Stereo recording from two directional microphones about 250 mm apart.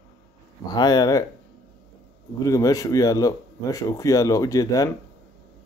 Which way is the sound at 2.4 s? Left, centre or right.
Centre.